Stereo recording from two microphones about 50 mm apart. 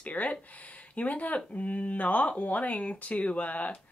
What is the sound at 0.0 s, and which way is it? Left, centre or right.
Speech, left.